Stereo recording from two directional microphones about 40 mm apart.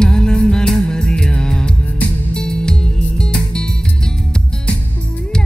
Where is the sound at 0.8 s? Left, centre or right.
Centre.